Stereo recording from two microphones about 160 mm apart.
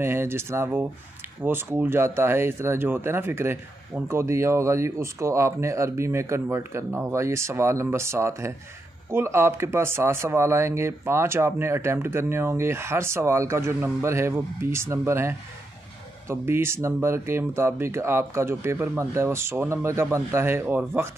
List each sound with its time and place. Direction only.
0.0 s speech: 15° right (ahead or behind)